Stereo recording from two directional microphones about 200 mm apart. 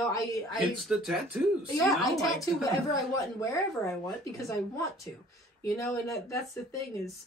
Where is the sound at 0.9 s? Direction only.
Centre (ahead or behind).